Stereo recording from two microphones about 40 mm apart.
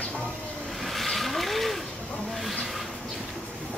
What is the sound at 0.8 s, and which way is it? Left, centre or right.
Vehicle, centre.